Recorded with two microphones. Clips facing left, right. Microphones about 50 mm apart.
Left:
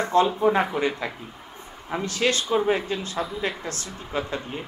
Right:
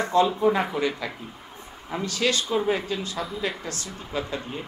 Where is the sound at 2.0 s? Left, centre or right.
Left.